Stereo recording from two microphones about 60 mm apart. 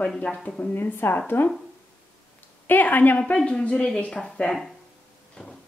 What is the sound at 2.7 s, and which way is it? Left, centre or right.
Speech, left.